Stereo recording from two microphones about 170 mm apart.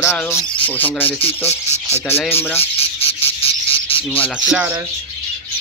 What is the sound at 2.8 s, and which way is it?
Cricket, 35° left (ahead or behind).